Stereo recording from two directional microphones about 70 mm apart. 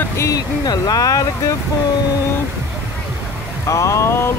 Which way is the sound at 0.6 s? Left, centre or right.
Left.